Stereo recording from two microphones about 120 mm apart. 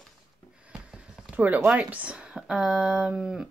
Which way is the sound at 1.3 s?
15° right (ahead or behind).